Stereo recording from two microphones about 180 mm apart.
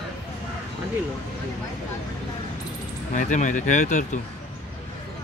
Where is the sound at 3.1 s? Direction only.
45° left (ahead or behind).